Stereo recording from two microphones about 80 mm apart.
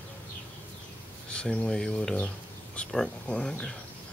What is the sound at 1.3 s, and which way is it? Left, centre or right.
Speech, centre.